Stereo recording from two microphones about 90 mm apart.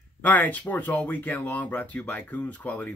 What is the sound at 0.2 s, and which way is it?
Speech, 15° left (ahead or behind).